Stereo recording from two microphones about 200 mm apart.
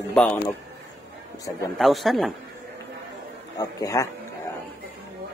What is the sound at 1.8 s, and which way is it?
Speech, centre (ahead or behind).